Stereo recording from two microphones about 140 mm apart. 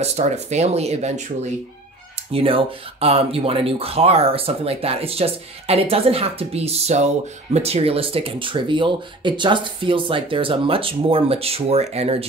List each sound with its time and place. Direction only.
0.0 s speech: 50° right (ahead or behind)
2.3 s speech: 40° right (ahead or behind)